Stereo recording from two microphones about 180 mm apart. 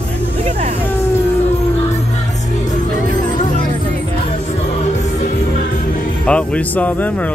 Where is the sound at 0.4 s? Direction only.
35° right (ahead or behind).